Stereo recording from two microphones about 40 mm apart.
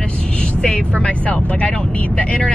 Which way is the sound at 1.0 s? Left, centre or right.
Left.